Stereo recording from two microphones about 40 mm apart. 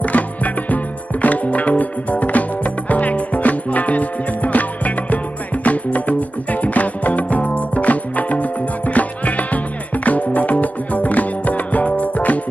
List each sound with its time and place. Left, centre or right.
0.0 s music: left